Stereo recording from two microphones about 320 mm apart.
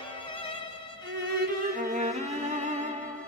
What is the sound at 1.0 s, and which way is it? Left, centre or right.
Music, right.